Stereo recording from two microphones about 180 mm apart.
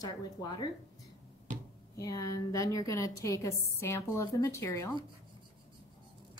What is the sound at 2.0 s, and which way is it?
A woman's voice, 20° left (ahead or behind).